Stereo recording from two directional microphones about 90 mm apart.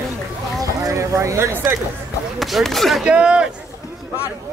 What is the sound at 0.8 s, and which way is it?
Speech, 35° right (ahead or behind).